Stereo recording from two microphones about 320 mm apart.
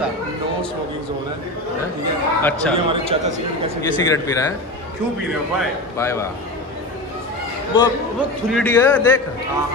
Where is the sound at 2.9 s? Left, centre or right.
Centre.